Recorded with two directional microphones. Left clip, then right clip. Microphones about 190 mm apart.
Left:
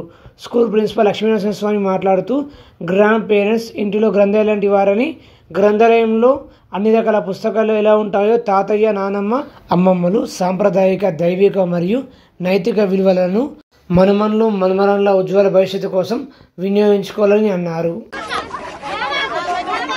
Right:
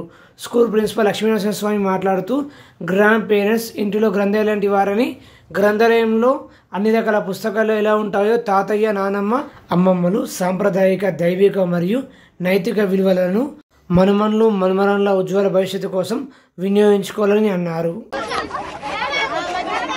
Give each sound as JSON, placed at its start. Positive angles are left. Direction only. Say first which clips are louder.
{"t": 0.5, "sound": "speech", "louder": "left 1 dB", "side_deg": -5}
{"t": 18.1, "sound": "speech", "louder": "even", "side_deg": 15}